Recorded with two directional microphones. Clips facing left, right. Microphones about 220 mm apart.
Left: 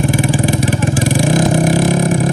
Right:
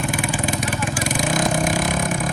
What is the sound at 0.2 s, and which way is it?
Vehicle, 30° left (ahead or behind).